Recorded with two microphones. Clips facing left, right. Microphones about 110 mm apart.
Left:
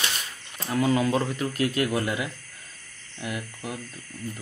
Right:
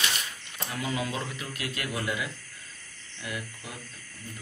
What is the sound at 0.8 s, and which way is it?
A man's voice, 45° left (ahead or behind).